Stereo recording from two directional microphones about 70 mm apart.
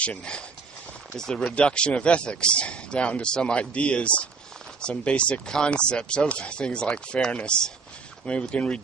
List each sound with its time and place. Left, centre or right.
0.0 s speech: centre